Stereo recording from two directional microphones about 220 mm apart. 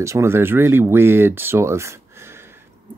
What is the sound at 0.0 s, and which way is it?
Speech, 10° right (ahead or behind).